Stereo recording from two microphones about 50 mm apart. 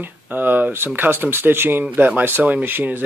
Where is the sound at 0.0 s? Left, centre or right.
Right.